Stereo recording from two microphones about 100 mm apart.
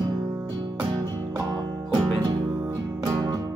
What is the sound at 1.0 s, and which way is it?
Music, 35° right (ahead or behind).